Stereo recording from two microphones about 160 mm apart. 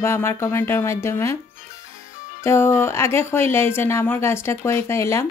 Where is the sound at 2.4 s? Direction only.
15° left (ahead or behind).